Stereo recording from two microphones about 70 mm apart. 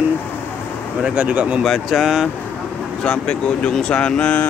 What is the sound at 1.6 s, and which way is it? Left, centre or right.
Speech, centre.